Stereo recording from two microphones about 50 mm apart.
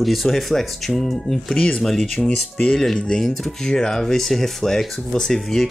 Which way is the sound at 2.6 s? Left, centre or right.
Centre.